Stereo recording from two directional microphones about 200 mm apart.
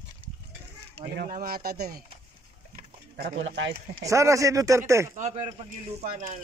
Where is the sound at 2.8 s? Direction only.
50° right (ahead or behind).